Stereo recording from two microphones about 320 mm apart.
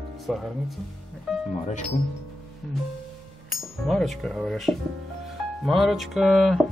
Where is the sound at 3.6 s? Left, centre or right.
Centre.